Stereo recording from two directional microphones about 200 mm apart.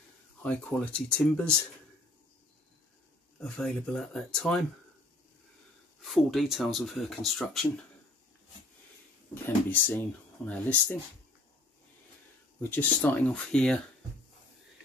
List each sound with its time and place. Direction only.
0.4 s speech: 5° left (ahead or behind)
3.3 s speech: 5° left (ahead or behind)
6.0 s speech: centre (ahead or behind)
9.3 s speech: 10° left (ahead or behind)
12.5 s speech: 10° left (ahead or behind)